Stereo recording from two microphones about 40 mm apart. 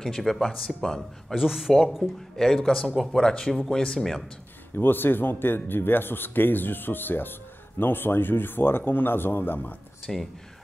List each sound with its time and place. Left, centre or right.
0.0 s speech: centre
1.3 s speech: centre
2.3 s speech: centre
3.1 s speech: centre
4.7 s speech: left
10.1 s speech: centre